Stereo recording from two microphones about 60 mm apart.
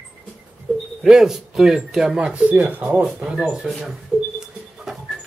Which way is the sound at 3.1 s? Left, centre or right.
Centre.